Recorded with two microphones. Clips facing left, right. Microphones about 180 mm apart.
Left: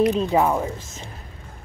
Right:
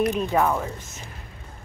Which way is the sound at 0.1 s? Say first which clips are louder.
Left 3 dB; 25° left (ahead or behind).